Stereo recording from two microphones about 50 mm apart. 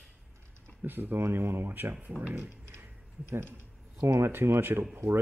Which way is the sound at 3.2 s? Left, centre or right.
Right.